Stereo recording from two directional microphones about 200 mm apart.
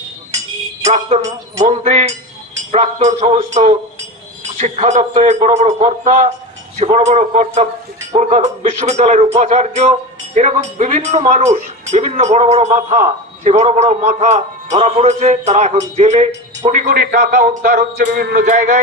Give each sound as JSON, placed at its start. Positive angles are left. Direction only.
{"t": 0.8, "sound": "speech", "side_deg": -35}
{"t": 16.9, "sound": "a man's voice", "side_deg": -50}